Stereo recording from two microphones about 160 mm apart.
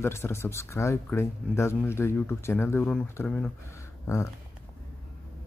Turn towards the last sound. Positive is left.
turn(degrees=15)  # may be behind; listen again after turning